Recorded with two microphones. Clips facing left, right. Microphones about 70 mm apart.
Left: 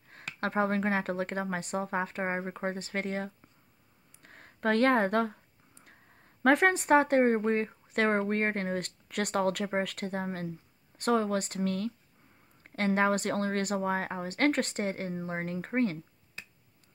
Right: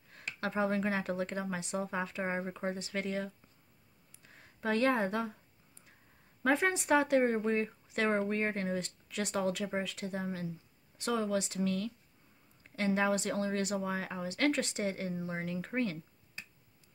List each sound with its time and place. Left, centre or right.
0.1 s a woman's voice: left
6.4 s a woman's voice: left